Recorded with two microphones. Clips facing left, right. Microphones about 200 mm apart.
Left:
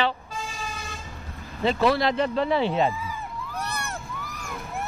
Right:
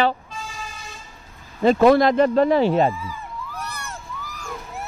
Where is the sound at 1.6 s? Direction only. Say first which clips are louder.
Right 8 dB; 50° right (ahead or behind).